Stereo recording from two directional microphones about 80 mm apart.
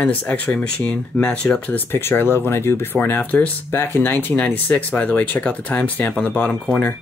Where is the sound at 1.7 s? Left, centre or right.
Left.